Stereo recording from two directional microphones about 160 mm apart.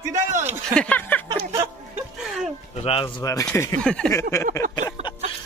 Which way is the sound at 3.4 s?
15° left (ahead or behind).